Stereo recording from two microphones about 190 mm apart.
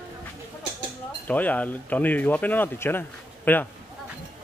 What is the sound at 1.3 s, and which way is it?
A man's voice, 10° left (ahead or behind).